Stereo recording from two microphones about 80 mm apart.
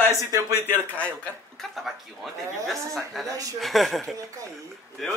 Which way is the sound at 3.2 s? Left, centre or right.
Right.